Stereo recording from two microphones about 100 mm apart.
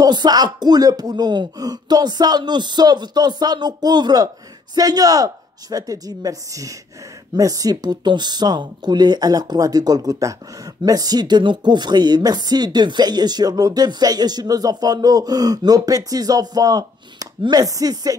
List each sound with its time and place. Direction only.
0.0 s speech: 45° right (ahead or behind)